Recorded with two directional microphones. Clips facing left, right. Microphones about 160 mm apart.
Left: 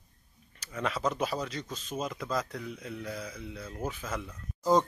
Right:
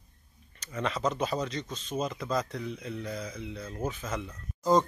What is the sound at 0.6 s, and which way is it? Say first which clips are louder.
Speech: right 1 dB; centre (ahead or behind).